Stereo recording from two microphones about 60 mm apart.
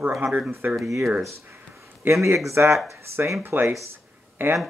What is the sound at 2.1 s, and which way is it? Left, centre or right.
Speech, right.